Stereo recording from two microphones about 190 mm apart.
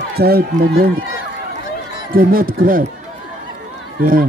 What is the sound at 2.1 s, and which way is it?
Speech, 50° right (ahead or behind).